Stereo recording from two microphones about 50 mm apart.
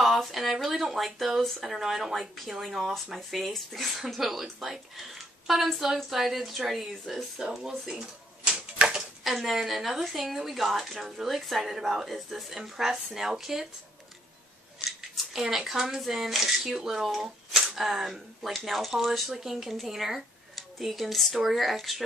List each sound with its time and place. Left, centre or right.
0.0 s speech: centre
7.9 s typewriter: centre
9.2 s speech: centre
14.9 s speech: centre